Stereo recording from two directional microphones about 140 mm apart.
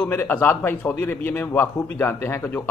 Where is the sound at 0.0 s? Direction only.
15° left (ahead or behind).